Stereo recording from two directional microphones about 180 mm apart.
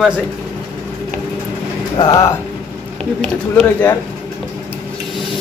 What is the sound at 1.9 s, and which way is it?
Speech, 20° left (ahead or behind).